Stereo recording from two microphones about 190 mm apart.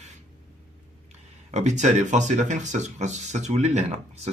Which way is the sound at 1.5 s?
35° right (ahead or behind).